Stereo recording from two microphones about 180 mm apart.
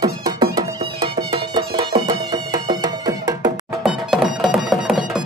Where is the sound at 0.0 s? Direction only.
20° right (ahead or behind).